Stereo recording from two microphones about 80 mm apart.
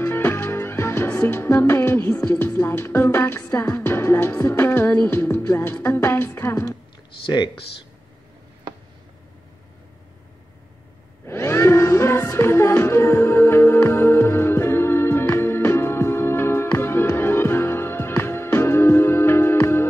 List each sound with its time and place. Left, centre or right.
0.0 s music: left
7.2 s speech: left
11.2 s music: left